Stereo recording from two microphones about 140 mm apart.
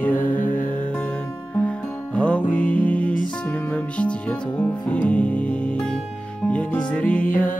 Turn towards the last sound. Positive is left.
turn(degrees=10)  # may be behind; listen again after turning